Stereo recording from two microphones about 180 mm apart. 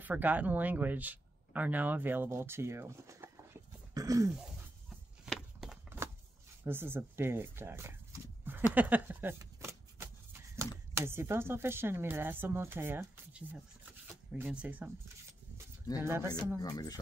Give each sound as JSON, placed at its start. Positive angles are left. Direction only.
{"t": 0.0, "sound": "speech", "side_deg": -10}
{"t": 3.9, "sound": "throat clearing", "side_deg": -20}
{"t": 5.2, "sound": "walk", "side_deg": -5}
{"t": 6.6, "sound": "speech", "side_deg": -10}
{"t": 8.7, "sound": "shuffling cards", "side_deg": -10}
{"t": 10.5, "sound": "speech", "side_deg": -15}
{"t": 16.0, "sound": "speech", "side_deg": -15}
{"t": 16.6, "sound": "speech", "side_deg": 20}